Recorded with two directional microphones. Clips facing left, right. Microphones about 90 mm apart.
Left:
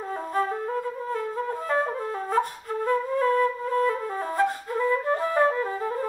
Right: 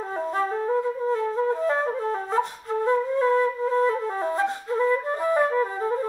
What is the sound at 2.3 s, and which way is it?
Flute, 25° right (ahead or behind).